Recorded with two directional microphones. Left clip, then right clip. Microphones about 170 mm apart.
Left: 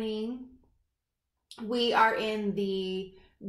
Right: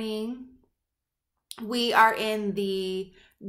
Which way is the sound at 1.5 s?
20° right (ahead or behind).